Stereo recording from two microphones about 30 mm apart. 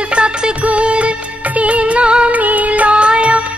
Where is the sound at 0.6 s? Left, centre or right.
Right.